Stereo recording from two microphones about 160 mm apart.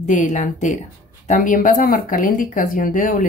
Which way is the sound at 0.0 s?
50° left (ahead or behind).